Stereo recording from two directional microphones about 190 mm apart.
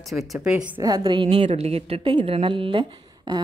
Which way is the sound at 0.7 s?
25° right (ahead or behind).